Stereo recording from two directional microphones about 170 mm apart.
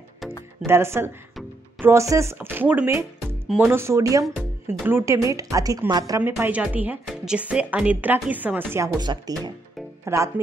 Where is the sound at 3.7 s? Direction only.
15° right (ahead or behind).